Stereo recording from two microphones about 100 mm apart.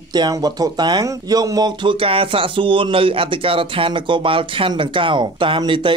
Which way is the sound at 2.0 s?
65° right (ahead or behind).